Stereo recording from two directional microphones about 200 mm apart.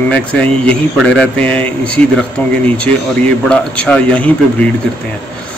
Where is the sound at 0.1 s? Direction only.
5° left (ahead or behind).